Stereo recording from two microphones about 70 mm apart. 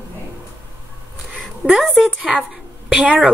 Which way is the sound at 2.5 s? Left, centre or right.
Centre.